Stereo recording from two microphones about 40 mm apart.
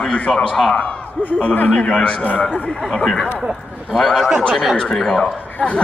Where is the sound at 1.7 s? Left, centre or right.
Left.